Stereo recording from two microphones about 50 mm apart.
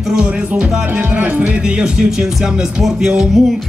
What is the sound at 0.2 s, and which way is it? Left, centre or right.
Music, right.